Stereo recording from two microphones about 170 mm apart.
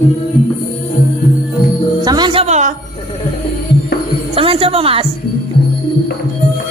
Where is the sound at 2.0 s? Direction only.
25° right (ahead or behind).